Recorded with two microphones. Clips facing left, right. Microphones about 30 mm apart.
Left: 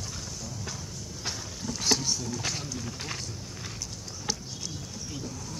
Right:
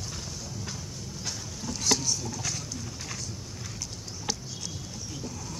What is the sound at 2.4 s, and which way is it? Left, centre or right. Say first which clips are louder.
Speech: left 1 dB; left.